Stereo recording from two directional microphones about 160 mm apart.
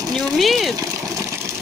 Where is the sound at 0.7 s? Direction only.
20° right (ahead or behind).